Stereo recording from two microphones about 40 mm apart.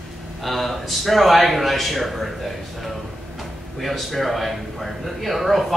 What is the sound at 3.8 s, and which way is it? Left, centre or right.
A man's voice, centre.